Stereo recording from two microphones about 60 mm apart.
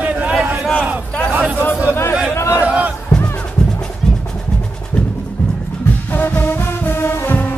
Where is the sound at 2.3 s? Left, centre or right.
Left.